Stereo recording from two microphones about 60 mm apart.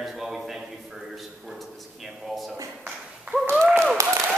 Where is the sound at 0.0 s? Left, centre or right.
Centre.